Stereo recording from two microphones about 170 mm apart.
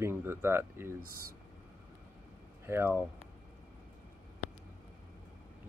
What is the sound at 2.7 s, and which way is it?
Speech, 15° right (ahead or behind).